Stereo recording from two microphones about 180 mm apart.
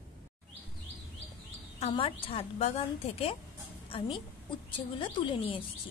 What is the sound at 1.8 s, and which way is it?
A woman's voice, 30° left (ahead or behind).